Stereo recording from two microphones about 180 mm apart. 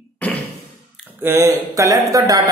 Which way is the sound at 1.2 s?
15° right (ahead or behind).